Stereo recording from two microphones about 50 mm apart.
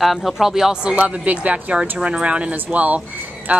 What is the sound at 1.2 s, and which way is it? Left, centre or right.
A woman's voice, right.